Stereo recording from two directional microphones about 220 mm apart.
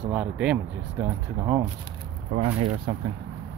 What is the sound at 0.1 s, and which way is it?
Speech, 5° right (ahead or behind).